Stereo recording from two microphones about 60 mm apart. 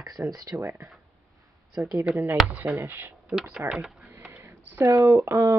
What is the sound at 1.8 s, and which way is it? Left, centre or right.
Speech, right.